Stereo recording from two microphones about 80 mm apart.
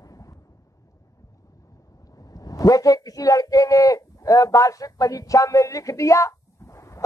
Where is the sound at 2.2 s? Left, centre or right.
Left.